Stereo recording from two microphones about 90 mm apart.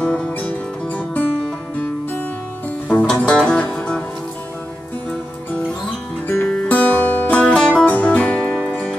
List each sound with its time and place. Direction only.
0.0 s music: 10° left (ahead or behind)
2.9 s music: 15° left (ahead or behind)
5.5 s music: 15° left (ahead or behind)
6.2 s music: 25° left (ahead or behind); by 8.8 s 5° left (ahead or behind)